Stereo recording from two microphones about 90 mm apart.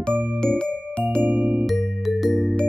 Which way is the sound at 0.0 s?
5° left (ahead or behind).